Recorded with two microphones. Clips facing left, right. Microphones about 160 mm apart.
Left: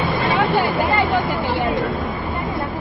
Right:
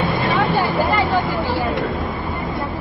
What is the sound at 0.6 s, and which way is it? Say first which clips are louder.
Vehicle: even; 20° left (ahead or behind).